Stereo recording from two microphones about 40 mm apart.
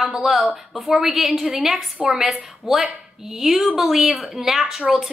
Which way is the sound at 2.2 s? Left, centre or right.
Centre.